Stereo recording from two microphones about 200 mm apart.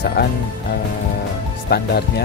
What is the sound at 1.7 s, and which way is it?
Speech, 55° left (ahead or behind).